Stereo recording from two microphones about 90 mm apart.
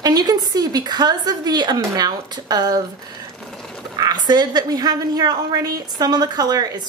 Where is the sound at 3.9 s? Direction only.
45° right (ahead or behind).